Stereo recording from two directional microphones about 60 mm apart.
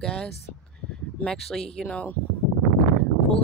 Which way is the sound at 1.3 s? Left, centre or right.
Centre.